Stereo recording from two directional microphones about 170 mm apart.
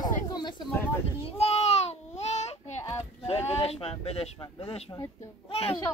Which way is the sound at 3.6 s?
35° left (ahead or behind).